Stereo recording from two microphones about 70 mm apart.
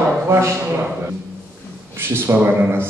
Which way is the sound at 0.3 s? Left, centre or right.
Right.